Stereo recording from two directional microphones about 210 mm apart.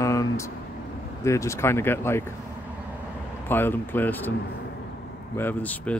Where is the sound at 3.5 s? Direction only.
10° left (ahead or behind).